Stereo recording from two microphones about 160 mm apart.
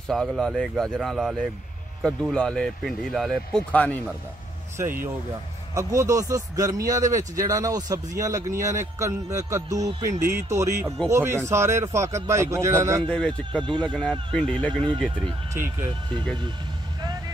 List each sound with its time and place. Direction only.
0.1 s speech: centre (ahead or behind)
5.8 s speech: 20° right (ahead or behind)
13.1 s speech: 5° left (ahead or behind)
13.7 s speech: 30° right (ahead or behind)
13.9 s speech: 5° left (ahead or behind)
14.7 s speech: 30° right (ahead or behind)
15.5 s speech: 15° right (ahead or behind)